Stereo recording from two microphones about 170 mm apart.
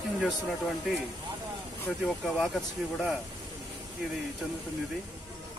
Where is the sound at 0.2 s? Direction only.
Centre (ahead or behind).